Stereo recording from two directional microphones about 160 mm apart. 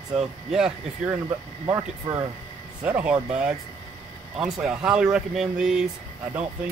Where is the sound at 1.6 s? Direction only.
25° right (ahead or behind).